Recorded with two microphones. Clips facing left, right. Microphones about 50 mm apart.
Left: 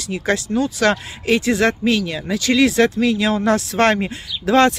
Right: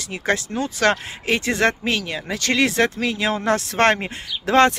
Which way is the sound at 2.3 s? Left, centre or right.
Right.